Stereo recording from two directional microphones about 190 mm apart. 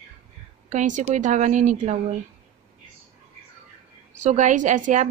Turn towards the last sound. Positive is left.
turn(degrees=-40)  # may be behind; listen again after turning